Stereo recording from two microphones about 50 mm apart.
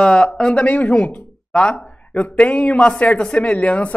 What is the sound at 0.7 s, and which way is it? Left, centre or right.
Speech, left.